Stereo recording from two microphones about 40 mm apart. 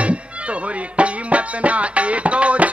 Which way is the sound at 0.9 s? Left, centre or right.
Right.